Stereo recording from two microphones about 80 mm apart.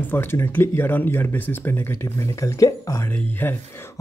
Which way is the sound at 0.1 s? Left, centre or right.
Left.